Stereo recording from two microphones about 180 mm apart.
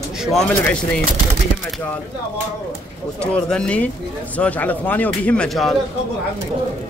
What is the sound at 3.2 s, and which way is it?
A man's voice, 5° left (ahead or behind).